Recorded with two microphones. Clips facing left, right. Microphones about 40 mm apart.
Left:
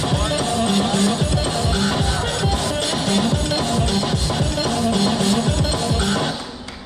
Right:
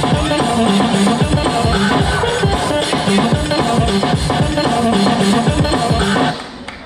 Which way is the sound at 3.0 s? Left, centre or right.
Right.